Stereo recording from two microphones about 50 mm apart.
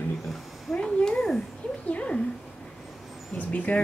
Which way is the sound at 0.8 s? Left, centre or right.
Centre.